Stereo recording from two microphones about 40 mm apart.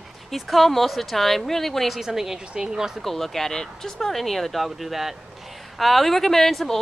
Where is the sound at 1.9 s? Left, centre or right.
Centre.